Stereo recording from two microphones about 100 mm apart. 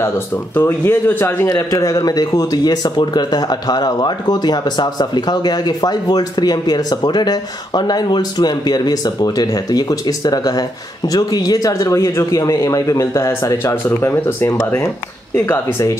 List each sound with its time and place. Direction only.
0.6 s speech: 20° left (ahead or behind)
1.5 s speech: 35° left (ahead or behind)